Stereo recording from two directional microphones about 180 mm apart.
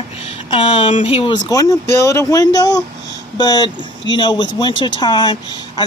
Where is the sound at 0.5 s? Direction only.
30° left (ahead or behind).